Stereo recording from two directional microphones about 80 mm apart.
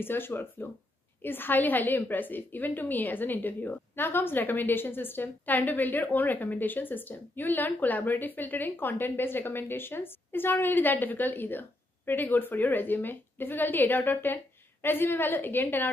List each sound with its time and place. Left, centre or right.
0.0 s a woman's voice: left